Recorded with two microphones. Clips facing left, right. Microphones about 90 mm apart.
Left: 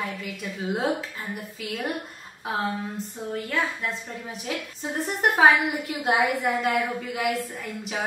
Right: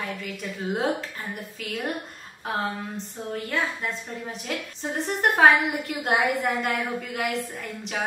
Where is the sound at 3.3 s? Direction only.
Centre (ahead or behind).